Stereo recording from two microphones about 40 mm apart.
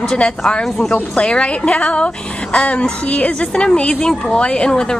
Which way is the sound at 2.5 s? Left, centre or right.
Left.